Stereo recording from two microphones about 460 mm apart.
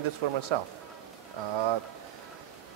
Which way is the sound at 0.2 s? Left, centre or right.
Right.